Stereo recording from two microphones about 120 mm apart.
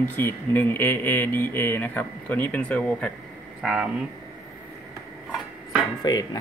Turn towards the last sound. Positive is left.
turn(degrees=35)  # may be behind; listen again after turning